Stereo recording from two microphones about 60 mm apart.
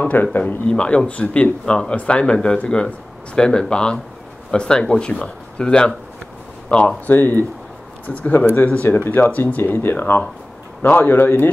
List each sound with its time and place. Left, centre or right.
0.0 s speech: left
0.7 s speech: centre
7.1 s speech: left